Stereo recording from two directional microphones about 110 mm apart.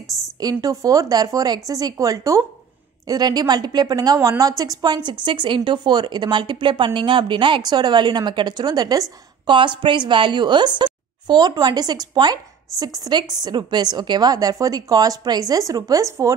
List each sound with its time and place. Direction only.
0.0 s a sound: centre (ahead or behind)
0.4 s a woman's voice: 35° right (ahead or behind)
9.5 s a woman's voice: 45° right (ahead or behind); by 16.3 s 30° right (ahead or behind)